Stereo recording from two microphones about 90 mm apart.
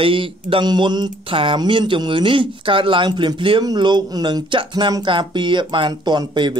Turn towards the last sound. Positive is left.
turn(degrees=-55)  # may be behind; listen again after turning